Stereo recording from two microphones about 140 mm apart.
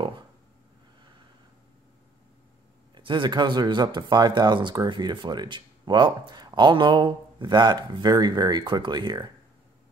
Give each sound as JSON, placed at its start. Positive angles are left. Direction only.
{"t": 2.9, "sound": "speech", "side_deg": -35}